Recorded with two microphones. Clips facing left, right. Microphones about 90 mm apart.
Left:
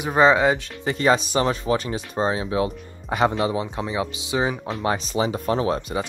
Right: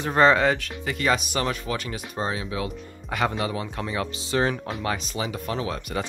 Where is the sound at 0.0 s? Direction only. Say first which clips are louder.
Left 2 dB; 15° left (ahead or behind).